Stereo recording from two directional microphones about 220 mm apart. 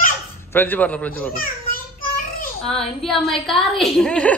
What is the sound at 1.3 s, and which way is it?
Speech, 40° left (ahead or behind).